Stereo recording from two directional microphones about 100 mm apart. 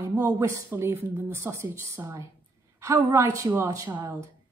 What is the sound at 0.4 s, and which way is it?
A woman's voice, 25° right (ahead or behind).